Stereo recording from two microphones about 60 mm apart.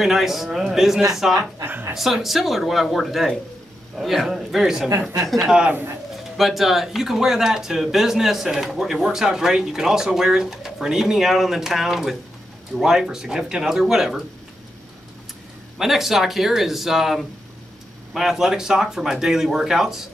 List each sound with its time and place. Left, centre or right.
0.0 s speech: centre
1.7 s a sound: right
2.0 s speech: centre
5.7 s speech: right
6.3 s speech: centre
15.8 s speech: centre